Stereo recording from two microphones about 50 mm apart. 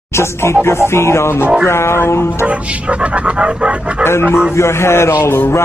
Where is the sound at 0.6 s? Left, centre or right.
Left.